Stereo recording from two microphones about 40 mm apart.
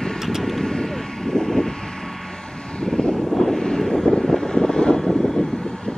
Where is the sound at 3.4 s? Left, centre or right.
Centre.